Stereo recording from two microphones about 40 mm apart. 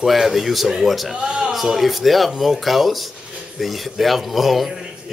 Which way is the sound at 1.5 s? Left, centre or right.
Centre.